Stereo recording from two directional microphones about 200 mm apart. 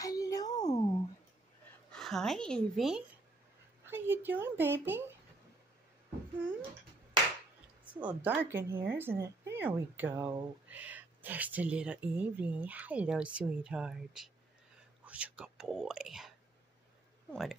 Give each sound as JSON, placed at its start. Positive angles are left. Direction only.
{"t": 0.0, "sound": "a sound", "side_deg": 15}
{"t": 1.9, "sound": "a woman's voice", "side_deg": 0}
{"t": 3.8, "sound": "a woman's voice", "side_deg": -10}
{"t": 7.8, "sound": "a woman's voice", "side_deg": -5}